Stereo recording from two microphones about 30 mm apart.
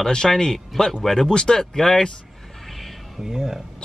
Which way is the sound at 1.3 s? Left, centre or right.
Left.